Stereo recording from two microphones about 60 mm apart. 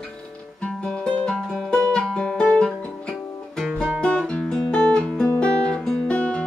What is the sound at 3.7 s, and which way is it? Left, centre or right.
Music, right.